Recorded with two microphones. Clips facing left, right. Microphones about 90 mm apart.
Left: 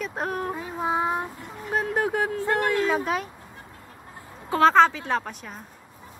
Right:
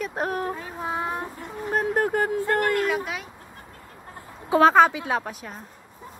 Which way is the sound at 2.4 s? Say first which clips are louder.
Right 1 dB; 15° left (ahead or behind).